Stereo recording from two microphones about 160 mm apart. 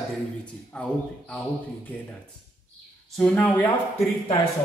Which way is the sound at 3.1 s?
5° left (ahead or behind).